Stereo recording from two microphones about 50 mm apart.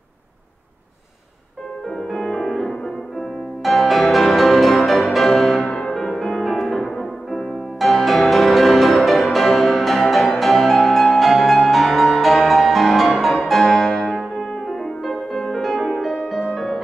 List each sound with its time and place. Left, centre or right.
1.9 s music: centre
5.6 s music: centre
5.9 s music: centre